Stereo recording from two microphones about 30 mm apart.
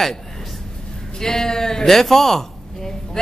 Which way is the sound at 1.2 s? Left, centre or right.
Centre.